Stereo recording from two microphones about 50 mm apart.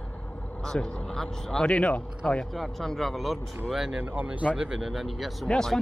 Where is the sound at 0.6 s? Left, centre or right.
Centre.